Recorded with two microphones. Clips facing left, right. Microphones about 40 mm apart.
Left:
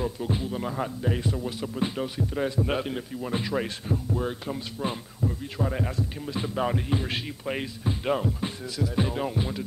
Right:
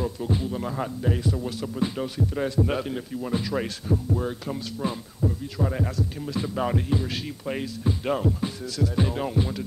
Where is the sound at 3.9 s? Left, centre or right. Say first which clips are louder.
Right 4 dB; centre.